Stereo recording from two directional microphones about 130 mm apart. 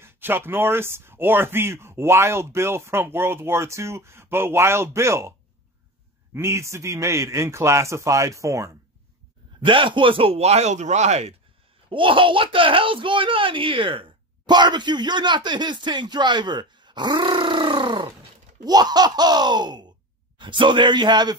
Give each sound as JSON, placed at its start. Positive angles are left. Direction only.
{"t": 0.0, "sound": "speech", "side_deg": -15}
{"t": 6.3, "sound": "speech", "side_deg": -20}
{"t": 9.7, "sound": "speech", "side_deg": -40}
{"t": 11.9, "sound": "speech", "side_deg": -40}